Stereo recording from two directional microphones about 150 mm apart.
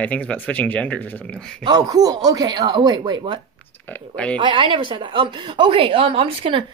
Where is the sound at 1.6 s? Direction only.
25° right (ahead or behind).